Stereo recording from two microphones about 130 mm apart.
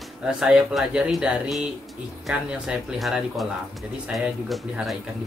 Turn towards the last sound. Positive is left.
turn(degrees=0)  # may be behind; listen again after turning